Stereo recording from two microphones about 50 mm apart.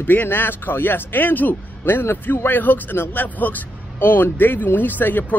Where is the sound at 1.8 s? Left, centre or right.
Left.